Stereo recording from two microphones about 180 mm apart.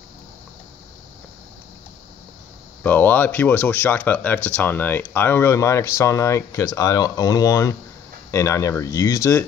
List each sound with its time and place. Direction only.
2.8 s speech: 10° left (ahead or behind)